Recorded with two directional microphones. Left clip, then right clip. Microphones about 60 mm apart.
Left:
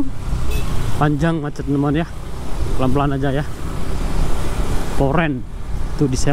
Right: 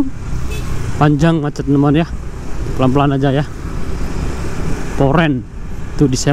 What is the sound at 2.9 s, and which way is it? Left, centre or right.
Speech, right.